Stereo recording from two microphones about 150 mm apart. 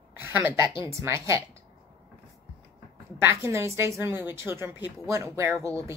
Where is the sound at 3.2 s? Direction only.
20° right (ahead or behind).